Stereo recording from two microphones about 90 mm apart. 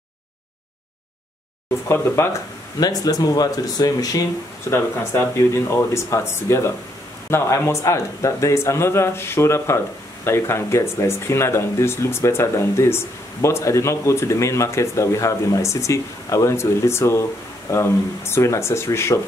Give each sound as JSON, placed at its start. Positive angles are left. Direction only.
{"t": 1.9, "sound": "speech", "side_deg": 30}
{"t": 2.8, "sound": "speech", "side_deg": 45}
{"t": 4.6, "sound": "speech", "side_deg": 30}